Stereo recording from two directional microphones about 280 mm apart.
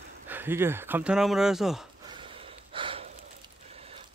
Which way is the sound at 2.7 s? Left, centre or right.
Centre.